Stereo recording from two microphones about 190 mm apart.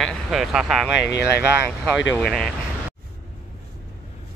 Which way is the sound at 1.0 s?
60° left (ahead or behind).